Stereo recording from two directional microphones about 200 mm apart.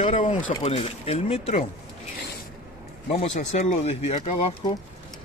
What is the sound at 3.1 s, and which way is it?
Speech, 35° left (ahead or behind).